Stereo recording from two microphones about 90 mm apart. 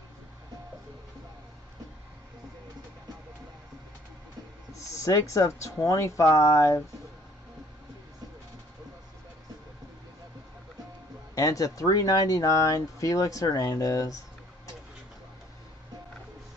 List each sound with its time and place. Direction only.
4.7 s speech: 35° left (ahead or behind)
11.3 s speech: 40° left (ahead or behind)